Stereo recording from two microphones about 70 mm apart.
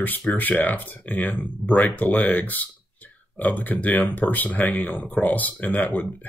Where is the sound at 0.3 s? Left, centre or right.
Left.